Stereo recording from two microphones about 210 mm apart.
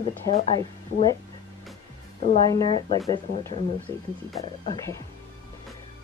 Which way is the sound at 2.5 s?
20° left (ahead or behind).